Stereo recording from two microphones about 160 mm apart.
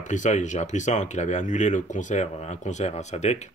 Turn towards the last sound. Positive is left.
turn(degrees=45)  # may be behind; listen again after turning